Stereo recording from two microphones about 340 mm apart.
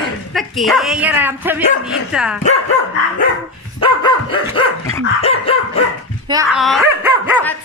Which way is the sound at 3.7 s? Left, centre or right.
Centre.